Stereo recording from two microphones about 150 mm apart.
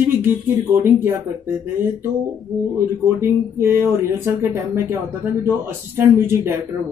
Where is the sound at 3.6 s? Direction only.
15° right (ahead or behind).